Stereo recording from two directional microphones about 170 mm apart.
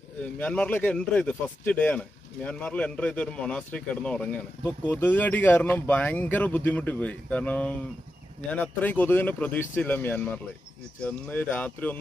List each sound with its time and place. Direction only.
0.2 s speech: 10° left (ahead or behind)